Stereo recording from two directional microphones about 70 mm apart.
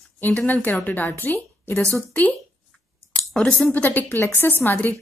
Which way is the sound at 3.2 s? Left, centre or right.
Centre.